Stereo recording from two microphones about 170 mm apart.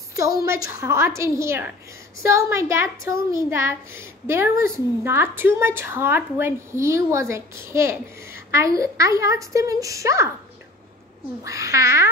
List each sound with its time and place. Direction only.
0.1 s a woman's voice: 20° right (ahead or behind)
11.4 s a child's voice: 20° right (ahead or behind)